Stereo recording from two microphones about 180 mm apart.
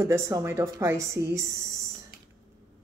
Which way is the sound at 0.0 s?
15° right (ahead or behind).